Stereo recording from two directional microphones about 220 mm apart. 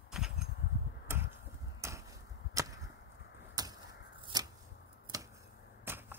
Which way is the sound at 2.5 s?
15° right (ahead or behind).